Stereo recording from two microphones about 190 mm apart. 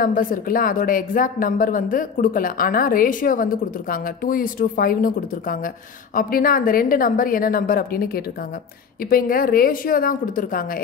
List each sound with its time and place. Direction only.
0.0 s speech: 45° left (ahead or behind)